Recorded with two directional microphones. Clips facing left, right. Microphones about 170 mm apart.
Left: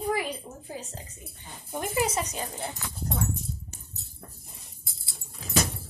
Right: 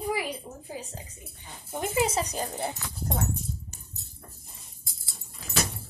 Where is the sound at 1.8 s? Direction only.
25° right (ahead or behind).